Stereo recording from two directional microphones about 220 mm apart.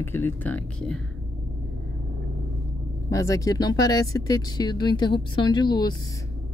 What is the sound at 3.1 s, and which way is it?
Speech, 15° left (ahead or behind).